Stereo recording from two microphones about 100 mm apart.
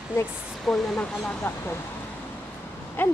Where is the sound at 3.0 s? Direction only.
20° left (ahead or behind).